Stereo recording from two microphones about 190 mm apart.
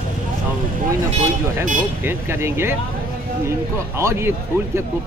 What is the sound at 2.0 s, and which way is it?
Speech, 10° right (ahead or behind).